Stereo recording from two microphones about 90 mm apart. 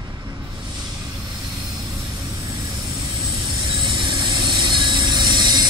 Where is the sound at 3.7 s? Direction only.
50° right (ahead or behind).